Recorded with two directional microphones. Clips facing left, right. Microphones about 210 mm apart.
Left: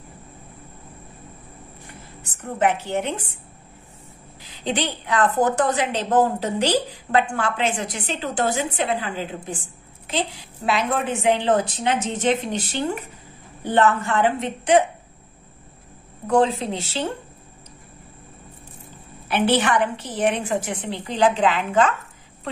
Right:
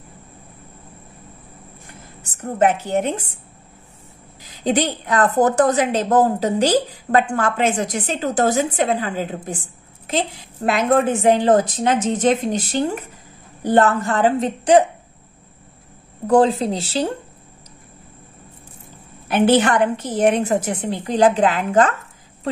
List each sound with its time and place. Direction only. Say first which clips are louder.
2.6 s a woman's voice: right 4 dB; 45° right (ahead or behind)
4.6 s a woman's voice: right 5 dB; 45° right (ahead or behind)
16.3 s a woman's voice: right 4 dB; 35° right (ahead or behind)
19.2 s a woman's voice: right 5 dB; 45° right (ahead or behind)